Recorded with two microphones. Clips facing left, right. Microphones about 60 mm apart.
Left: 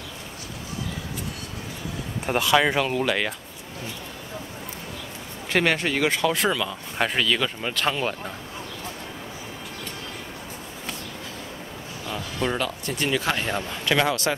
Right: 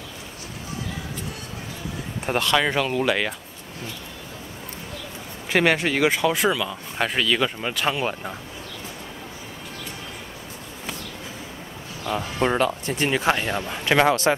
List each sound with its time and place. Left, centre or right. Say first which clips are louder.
2.2 s speech: left 1 dB; centre
5.5 s speech: right 2 dB; centre
12.1 s speech: right 5 dB; right
13.4 s speech: right 1 dB; centre
13.7 s speech: right 5 dB; right